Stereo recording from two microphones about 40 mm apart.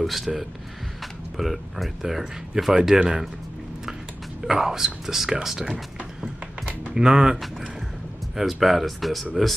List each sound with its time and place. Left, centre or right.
0.0 s speech: centre
4.4 s speech: centre
6.6 s typing: right
7.0 s speech: centre
8.4 s speech: centre